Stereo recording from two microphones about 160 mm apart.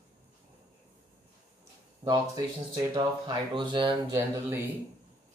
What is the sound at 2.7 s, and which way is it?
Speech, 25° right (ahead or behind).